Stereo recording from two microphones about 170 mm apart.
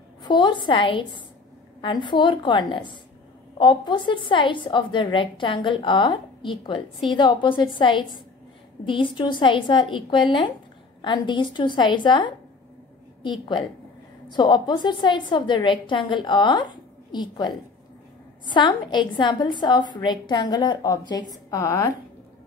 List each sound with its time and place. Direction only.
0.2 s a woman's voice: 25° left (ahead or behind)